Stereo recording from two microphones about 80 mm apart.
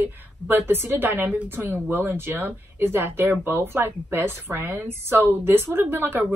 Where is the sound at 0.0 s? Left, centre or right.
Right.